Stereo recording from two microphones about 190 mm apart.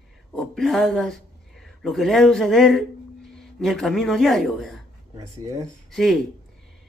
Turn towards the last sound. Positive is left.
turn(degrees=0)  # may be behind; listen again after turning